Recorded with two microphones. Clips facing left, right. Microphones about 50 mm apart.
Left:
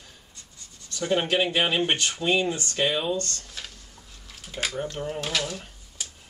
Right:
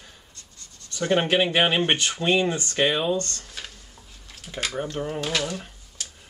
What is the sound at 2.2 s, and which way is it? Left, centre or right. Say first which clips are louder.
Speech: right 2 dB; right.